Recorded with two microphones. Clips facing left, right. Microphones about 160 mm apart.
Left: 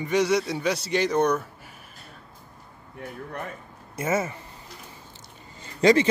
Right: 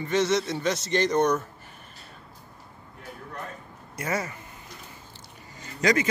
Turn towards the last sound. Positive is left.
turn(degrees=30)  # may be behind; listen again after turning